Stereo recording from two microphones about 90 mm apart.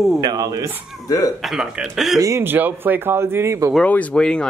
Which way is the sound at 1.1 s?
40° left (ahead or behind).